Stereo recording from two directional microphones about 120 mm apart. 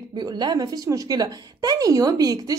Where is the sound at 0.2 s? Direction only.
35° right (ahead or behind).